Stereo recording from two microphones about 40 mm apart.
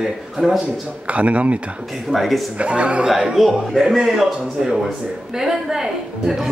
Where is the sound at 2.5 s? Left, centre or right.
Right.